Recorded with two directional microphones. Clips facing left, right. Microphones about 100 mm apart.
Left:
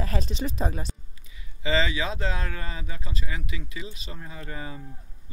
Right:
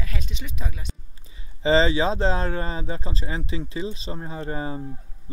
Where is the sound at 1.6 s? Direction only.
30° right (ahead or behind).